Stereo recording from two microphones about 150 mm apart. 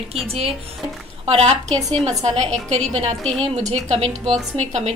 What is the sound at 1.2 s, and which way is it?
A woman's voice, 40° right (ahead or behind).